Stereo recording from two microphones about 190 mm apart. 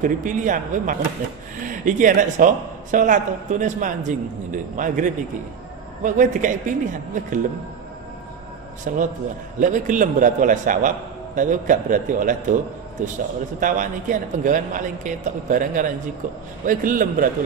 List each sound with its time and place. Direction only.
0.0 s a man's voice: 40° right (ahead or behind)
8.9 s a man's voice: 45° right (ahead or behind)